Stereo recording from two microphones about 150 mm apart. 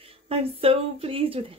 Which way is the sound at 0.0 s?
40° right (ahead or behind).